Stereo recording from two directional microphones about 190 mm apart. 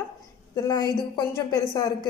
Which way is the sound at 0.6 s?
20° left (ahead or behind).